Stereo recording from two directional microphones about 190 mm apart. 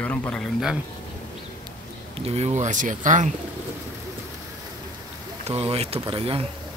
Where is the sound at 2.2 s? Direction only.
35° right (ahead or behind).